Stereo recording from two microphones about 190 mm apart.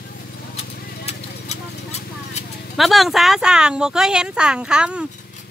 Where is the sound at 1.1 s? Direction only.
35° left (ahead or behind).